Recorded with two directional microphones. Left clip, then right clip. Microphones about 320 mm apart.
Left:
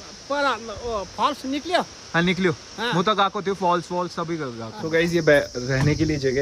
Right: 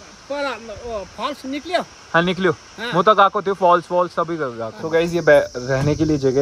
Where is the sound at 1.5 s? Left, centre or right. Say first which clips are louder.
Even; left.